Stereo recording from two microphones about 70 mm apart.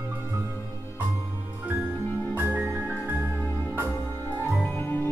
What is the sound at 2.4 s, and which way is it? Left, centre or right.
Music, right.